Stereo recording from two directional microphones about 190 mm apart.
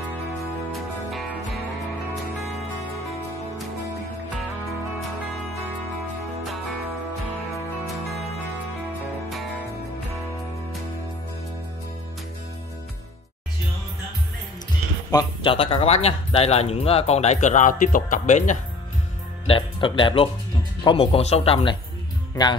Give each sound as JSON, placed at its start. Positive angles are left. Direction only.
{"t": 0.7, "sound": "music", "side_deg": 0}
{"t": 15.0, "sound": "speech", "side_deg": 25}
{"t": 19.4, "sound": "music", "side_deg": 25}
{"t": 20.8, "sound": "speech", "side_deg": 30}